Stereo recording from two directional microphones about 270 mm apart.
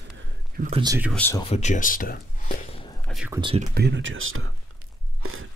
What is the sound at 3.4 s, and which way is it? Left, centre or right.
Speech, centre.